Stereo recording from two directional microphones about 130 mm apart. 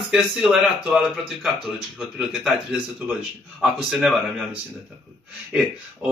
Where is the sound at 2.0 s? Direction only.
5° right (ahead or behind).